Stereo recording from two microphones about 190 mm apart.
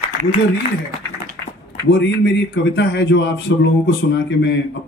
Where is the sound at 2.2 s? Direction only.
65° left (ahead or behind).